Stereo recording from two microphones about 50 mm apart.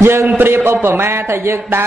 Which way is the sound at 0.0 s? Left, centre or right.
Right.